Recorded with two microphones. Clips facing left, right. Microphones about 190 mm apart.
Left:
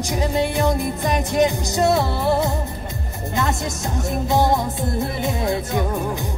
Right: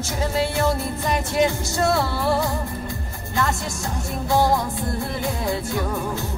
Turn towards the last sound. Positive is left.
turn(degrees=20)  # may be behind; listen again after turning